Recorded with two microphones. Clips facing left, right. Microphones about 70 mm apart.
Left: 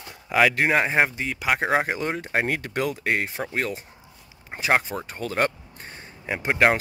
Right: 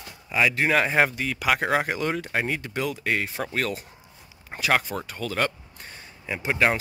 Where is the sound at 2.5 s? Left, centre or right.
Left.